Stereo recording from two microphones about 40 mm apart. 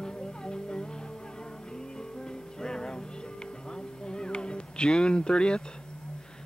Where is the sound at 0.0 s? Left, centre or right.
Centre.